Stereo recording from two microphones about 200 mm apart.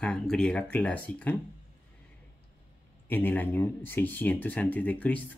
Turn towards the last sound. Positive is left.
turn(degrees=10)  # may be behind; listen again after turning